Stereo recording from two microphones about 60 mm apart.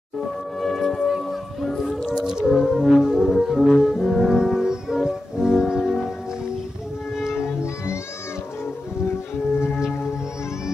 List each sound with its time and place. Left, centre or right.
0.6 s music: centre
2.0 s music: centre
7.3 s music: left